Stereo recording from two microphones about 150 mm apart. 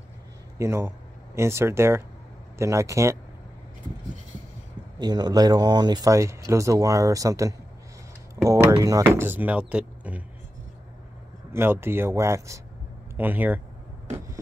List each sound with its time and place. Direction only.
0.6 s speech: 15° right (ahead or behind)
4.9 s speech: 25° right (ahead or behind); by 10.2 s 10° right (ahead or behind)
11.5 s speech: 15° right (ahead or behind)